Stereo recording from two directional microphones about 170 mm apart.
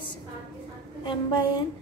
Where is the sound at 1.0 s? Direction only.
30° left (ahead or behind).